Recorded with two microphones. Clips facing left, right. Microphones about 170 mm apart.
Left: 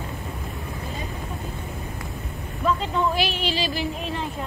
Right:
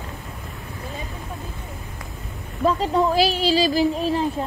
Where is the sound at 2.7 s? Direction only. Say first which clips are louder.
Right 4 dB; 35° right (ahead or behind).